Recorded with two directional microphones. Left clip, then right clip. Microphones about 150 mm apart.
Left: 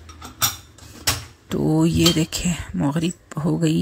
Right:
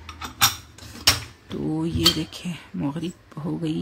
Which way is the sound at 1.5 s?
40° left (ahead or behind).